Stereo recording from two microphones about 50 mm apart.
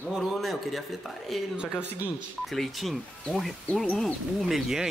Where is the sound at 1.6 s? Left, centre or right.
Centre.